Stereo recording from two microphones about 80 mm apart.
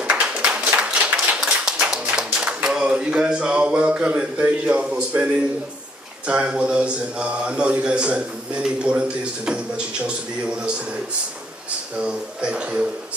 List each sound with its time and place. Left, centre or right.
0.0 s clapping: centre
2.1 s a sound: centre
6.2 s speech: centre
12.0 s speech: centre